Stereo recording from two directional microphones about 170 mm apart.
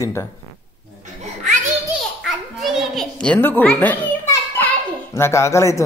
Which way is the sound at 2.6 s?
Centre (ahead or behind).